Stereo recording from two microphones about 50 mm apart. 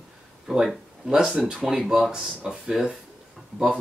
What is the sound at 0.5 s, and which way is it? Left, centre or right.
Speech, centre.